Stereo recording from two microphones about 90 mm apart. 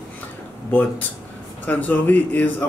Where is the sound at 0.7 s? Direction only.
20° left (ahead or behind).